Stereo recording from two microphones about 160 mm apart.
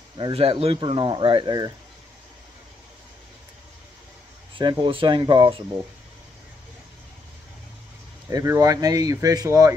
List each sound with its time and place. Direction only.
0.2 s speech: 40° right (ahead or behind)
4.6 s speech: 30° right (ahead or behind)
8.3 s speech: 20° right (ahead or behind)